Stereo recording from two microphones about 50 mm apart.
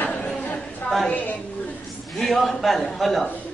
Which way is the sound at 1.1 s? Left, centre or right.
Left.